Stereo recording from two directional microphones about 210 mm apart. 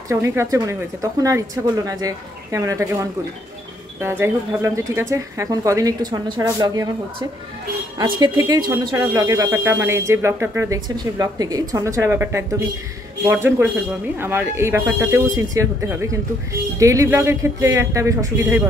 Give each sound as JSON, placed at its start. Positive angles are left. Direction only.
{"t": 0.1, "sound": "speech", "side_deg": -15}